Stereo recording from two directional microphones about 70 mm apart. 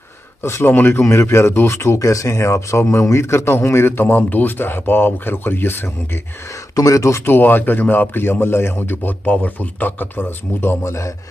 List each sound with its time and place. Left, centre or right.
0.4 s speech: left
1.8 s speech: left
6.7 s speech: left
7.2 s a man's voice: left